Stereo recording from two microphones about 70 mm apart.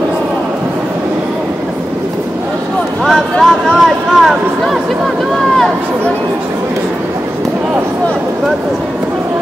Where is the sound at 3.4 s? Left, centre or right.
Centre.